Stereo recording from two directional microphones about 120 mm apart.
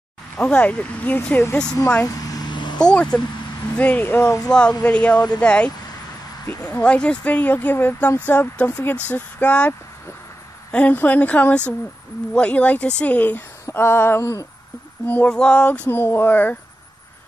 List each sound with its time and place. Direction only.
0.4 s speech: 10° left (ahead or behind)
2.0 s a sound: 30° left (ahead or behind)
2.8 s speech: 10° left (ahead or behind)
6.8 s speech: 10° left (ahead or behind)
13.7 s a sound: 20° left (ahead or behind)
15.0 s speech: 10° left (ahead or behind)